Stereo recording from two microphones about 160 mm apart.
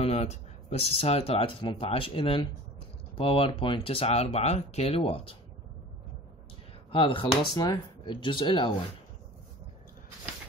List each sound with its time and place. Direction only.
0.0 s speech: 40° left (ahead or behind)
6.9 s speech: 30° left (ahead or behind)